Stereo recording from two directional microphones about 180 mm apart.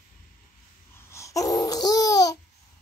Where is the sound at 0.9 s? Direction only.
15° left (ahead or behind).